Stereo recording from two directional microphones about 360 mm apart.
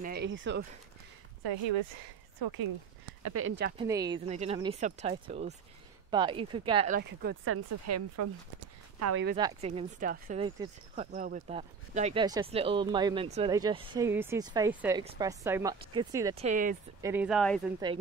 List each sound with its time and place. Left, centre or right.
0.0 s speech: right
1.4 s speech: right
2.4 s speech: right
3.3 s speech: right
3.7 s speech: centre
7.0 s speech: right
7.5 s speech: right
9.4 s speech: centre
17.0 s speech: centre